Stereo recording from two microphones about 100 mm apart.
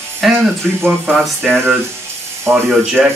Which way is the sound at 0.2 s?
Centre (ahead or behind).